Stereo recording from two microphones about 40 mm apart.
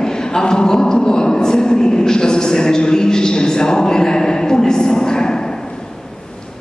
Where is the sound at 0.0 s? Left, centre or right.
Centre.